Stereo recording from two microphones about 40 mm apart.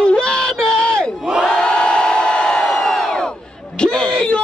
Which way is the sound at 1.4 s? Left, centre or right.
Left.